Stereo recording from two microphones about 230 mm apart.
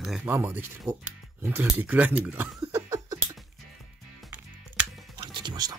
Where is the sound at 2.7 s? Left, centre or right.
Centre.